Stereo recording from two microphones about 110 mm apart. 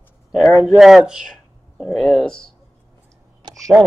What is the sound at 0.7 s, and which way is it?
Speech, 5° right (ahead or behind).